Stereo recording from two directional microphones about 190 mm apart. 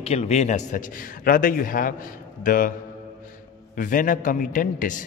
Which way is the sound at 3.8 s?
45° left (ahead or behind).